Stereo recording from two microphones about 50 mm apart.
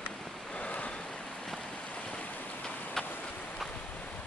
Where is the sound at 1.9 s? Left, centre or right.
Left.